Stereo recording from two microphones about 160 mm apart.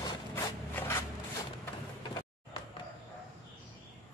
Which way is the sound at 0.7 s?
15° left (ahead or behind).